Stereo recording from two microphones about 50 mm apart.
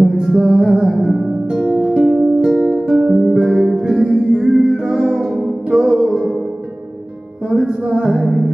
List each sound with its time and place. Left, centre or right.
0.0 s music: centre
2.6 s music: right
3.0 s music: centre
7.4 s music: centre